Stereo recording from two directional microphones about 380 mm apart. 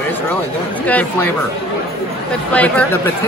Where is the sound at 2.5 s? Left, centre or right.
Centre.